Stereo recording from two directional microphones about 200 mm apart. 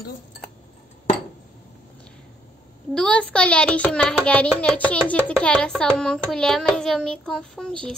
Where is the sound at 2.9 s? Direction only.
5° left (ahead or behind).